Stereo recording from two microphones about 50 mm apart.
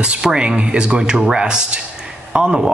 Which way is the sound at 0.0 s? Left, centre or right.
Centre.